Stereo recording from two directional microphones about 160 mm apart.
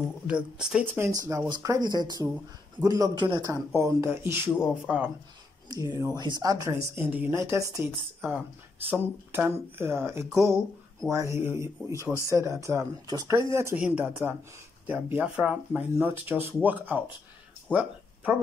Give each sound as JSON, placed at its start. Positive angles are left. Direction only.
{"t": 0.3, "sound": "speech", "side_deg": -5}
{"t": 1.0, "sound": "speech", "side_deg": -20}
{"t": 3.7, "sound": "speech", "side_deg": -15}
{"t": 5.7, "sound": "speech", "side_deg": -20}